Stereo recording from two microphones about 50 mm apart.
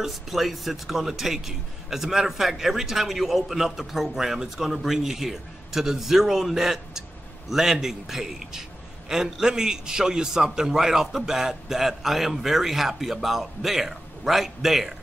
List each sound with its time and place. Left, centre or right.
0.0 s speech: centre